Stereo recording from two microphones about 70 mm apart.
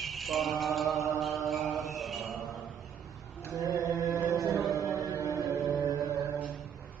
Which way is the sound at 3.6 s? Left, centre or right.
Right.